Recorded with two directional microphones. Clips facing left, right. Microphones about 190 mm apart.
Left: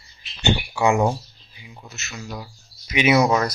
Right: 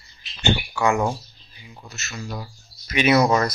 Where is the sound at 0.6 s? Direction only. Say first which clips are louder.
Left 4 dB; 25° left (ahead or behind).